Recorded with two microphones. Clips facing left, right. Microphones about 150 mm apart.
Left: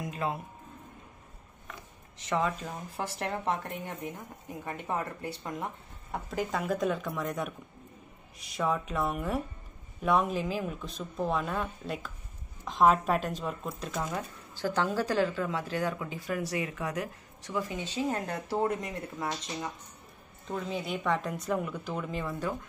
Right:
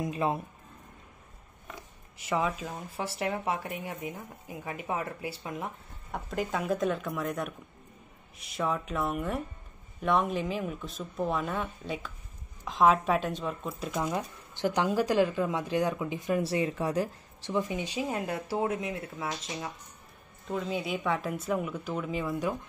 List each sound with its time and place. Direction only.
0.0 s speech: 20° right (ahead or behind)
2.1 s speech: 10° right (ahead or behind)
14.0 s speech: 20° right (ahead or behind)